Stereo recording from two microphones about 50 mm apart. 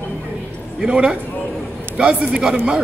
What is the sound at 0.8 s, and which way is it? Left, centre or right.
Speech, centre.